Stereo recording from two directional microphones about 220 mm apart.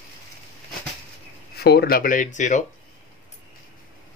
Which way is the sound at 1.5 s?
45° left (ahead or behind).